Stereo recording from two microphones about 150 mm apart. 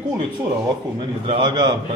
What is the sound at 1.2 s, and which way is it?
Speech, 35° right (ahead or behind).